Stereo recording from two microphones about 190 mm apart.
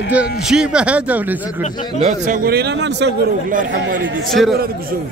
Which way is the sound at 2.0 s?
40° right (ahead or behind).